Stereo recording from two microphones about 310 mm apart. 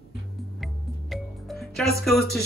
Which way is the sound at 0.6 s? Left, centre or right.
Centre.